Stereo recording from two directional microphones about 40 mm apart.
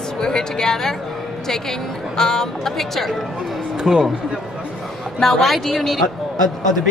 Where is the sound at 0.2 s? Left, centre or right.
Centre.